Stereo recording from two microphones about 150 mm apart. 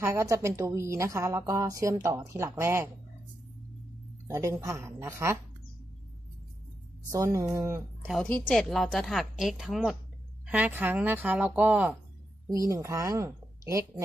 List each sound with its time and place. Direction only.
0.0 s a woman's voice: 20° right (ahead or behind)
4.3 s a woman's voice: 20° right (ahead or behind)
7.1 s a woman's voice: 20° right (ahead or behind)
8.1 s a woman's voice: 10° left (ahead or behind); by 11.9 s 10° right (ahead or behind)
12.4 s a woman's voice: 20° right (ahead or behind)